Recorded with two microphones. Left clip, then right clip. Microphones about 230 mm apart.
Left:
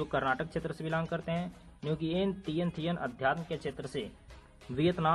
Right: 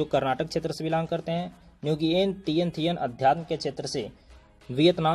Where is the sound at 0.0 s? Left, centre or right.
Centre.